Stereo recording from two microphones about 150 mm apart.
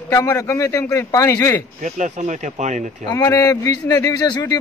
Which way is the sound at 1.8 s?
55° right (ahead or behind).